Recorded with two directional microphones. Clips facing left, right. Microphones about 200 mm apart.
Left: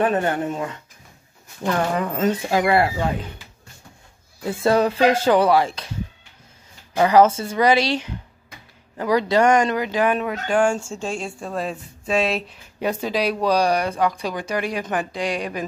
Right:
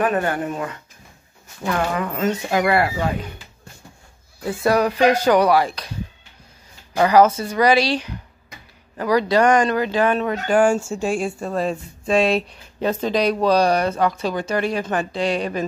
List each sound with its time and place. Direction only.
0.0 s speech: 25° left (ahead or behind)
4.5 s speech: 25° left (ahead or behind)
7.0 s speech: 25° left (ahead or behind)
10.3 s speech: centre (ahead or behind)